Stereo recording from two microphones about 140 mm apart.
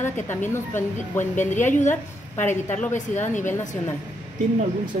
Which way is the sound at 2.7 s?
15° left (ahead or behind).